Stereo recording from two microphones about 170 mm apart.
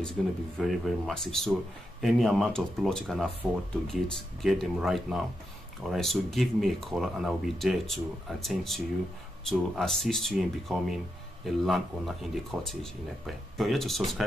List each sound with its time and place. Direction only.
0.2 s speech: centre (ahead or behind)